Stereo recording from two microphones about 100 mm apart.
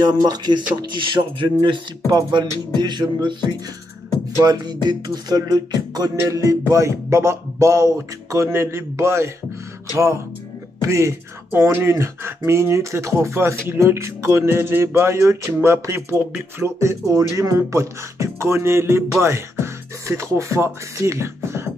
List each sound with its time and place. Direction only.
0.0 s music: 45° right (ahead or behind)
4.4 s speech: 45° right (ahead or behind); by 9.3 s 25° right (ahead or behind)
10.8 s speech: 30° right (ahead or behind)